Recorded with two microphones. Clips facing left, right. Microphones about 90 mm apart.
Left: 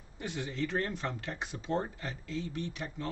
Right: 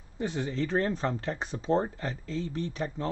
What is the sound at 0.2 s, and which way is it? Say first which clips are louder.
Speech: right 5 dB; 30° right (ahead or behind).